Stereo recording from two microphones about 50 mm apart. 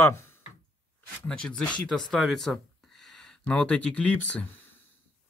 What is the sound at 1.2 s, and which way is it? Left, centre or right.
Speech, centre.